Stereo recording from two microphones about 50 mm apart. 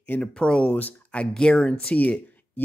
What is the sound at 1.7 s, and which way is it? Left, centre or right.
Speech, left.